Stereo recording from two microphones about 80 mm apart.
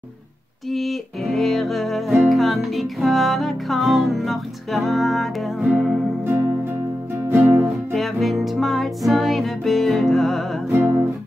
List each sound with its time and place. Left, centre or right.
0.7 s music: centre
6.2 s music: right
7.9 s music: centre